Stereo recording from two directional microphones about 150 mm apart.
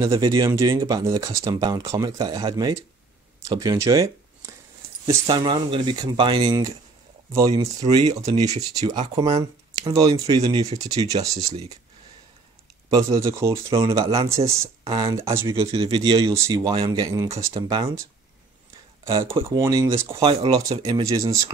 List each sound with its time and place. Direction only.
0.1 s speech: 30° right (ahead or behind)
5.0 s speech: 35° right (ahead or behind)
12.9 s speech: 25° right (ahead or behind)
15.9 s speech: 35° right (ahead or behind)
16.3 s speech: 25° right (ahead or behind)
19.5 s speech: 25° right (ahead or behind)